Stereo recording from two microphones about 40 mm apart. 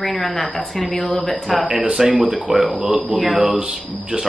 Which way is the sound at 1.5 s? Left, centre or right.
Centre.